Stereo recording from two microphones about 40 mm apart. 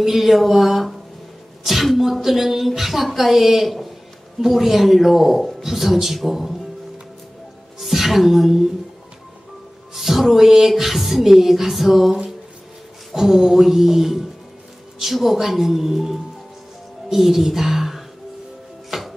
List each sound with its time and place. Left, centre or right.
0.0 s speech: centre
7.8 s speech: centre
9.9 s speech: centre
18.9 s music: centre